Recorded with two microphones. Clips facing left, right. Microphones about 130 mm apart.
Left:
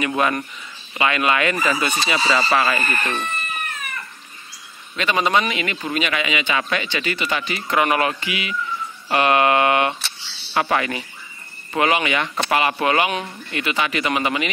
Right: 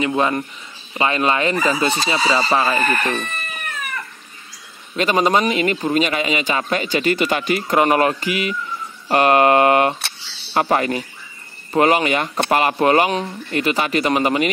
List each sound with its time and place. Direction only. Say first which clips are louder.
0.0 s speech: right 2 dB; 25° right (ahead or behind)
4.9 s a man's voice: right 3 dB; 40° right (ahead or behind)